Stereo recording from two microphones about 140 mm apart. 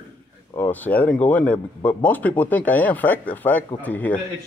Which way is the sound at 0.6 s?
15° left (ahead or behind).